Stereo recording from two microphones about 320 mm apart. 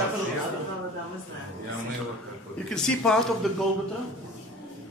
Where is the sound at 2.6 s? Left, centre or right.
Centre.